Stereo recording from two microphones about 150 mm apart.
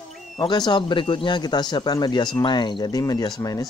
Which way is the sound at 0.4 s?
30° left (ahead or behind).